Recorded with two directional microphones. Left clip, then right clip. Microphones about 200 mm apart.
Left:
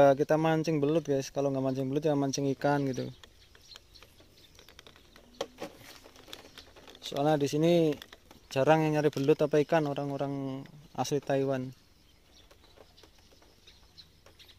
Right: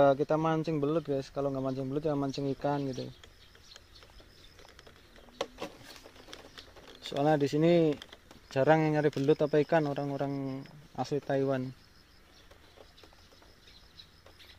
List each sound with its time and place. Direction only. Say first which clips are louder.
0.0 s speech: left 2 dB; 20° left (ahead or behind)
7.1 s speech: even; centre (ahead or behind)
11.4 s speech: even; centre (ahead or behind)